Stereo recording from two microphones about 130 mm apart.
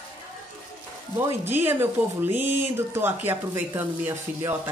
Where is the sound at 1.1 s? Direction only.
15° right (ahead or behind).